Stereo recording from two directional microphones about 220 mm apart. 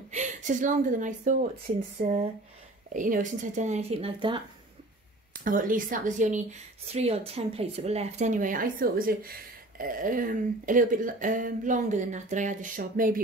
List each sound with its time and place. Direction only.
0.1 s a woman's voice: 35° right (ahead or behind)
2.9 s speech: 35° right (ahead or behind)
5.4 s speech: 40° right (ahead or behind)